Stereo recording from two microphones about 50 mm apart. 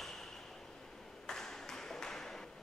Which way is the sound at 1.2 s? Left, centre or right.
Centre.